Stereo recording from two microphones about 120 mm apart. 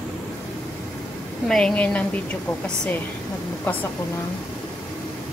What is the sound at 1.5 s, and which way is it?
Speech, 5° left (ahead or behind).